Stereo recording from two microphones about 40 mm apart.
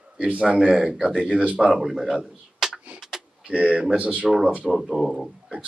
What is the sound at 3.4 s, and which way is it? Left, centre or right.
Speech, right.